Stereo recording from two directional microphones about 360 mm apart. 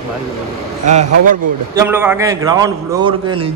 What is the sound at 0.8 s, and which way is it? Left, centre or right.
Speech, centre.